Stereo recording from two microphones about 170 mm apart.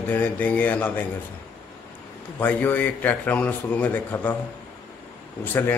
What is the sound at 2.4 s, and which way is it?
A man's voice, 10° left (ahead or behind).